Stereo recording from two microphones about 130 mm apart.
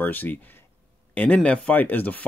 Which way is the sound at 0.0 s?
15° left (ahead or behind).